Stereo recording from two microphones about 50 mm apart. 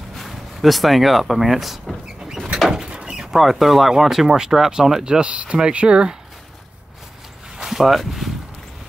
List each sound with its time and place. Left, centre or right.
0.1 s speech: centre
2.9 s door: centre
3.3 s speech: centre
7.5 s a sound: centre